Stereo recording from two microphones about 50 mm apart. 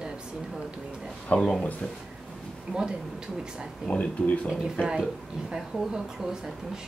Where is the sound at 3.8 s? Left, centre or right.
Left.